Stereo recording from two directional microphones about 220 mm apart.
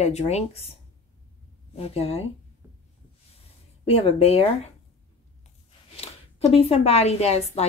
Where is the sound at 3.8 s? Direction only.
30° left (ahead or behind).